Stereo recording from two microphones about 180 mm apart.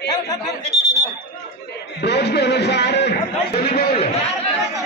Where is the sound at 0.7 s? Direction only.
40° right (ahead or behind).